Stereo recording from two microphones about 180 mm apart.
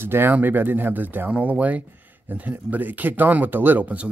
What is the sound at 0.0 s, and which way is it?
Speech, 10° right (ahead or behind).